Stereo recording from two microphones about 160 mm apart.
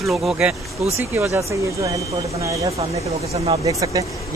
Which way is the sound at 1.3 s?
20° right (ahead or behind).